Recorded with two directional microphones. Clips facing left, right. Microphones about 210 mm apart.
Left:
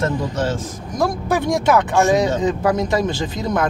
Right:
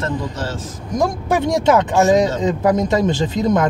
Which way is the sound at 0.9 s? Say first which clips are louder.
Right 2 dB; 25° right (ahead or behind).